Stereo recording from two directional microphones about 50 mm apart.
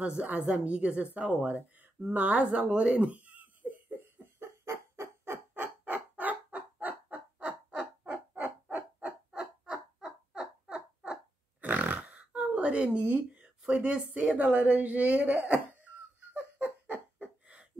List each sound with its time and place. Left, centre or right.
0.0 s speech: right
2.6 s a sound: right
4.0 s cough: right
4.6 s a sound: right
5.5 s fowl: right
7.3 s owl: right
8.1 s owl: right
9.4 s a sound: centre
11.6 s pig: right
13.0 s speech: right
13.7 s speech: centre
14.4 s a sound: right